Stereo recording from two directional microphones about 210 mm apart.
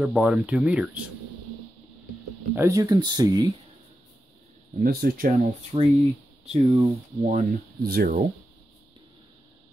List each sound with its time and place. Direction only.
0.0 s speech: 5° right (ahead or behind)
2.5 s speech: 15° right (ahead or behind)
4.7 s speech: 45° right (ahead or behind)
5.7 s speech: 20° right (ahead or behind)
7.8 s speech: 45° right (ahead or behind)